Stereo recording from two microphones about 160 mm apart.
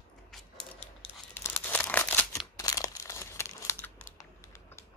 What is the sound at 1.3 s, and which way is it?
Crumpling, 10° left (ahead or behind).